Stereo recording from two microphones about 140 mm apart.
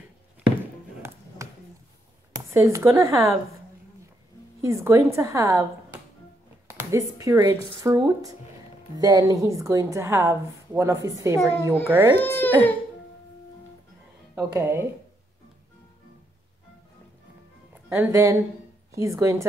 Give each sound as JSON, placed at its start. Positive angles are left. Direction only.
{"t": 1.0, "sound": "music", "side_deg": -20}
{"t": 1.4, "sound": "a sound", "side_deg": -20}
{"t": 2.5, "sound": "a woman's voice", "side_deg": -20}
{"t": 4.6, "sound": "a woman's voice", "side_deg": -20}
{"t": 6.7, "sound": "a woman's voice", "side_deg": -20}
{"t": 12.2, "sound": "speech", "side_deg": 15}
{"t": 14.3, "sound": "speech", "side_deg": -20}
{"t": 17.8, "sound": "a woman's voice", "side_deg": -15}